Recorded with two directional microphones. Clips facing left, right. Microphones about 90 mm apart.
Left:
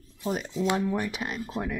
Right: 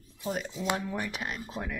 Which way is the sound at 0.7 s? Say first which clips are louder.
Left 5 dB; 15° left (ahead or behind).